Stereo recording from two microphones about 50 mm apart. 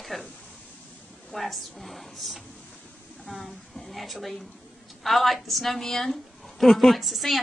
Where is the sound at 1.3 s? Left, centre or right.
Centre.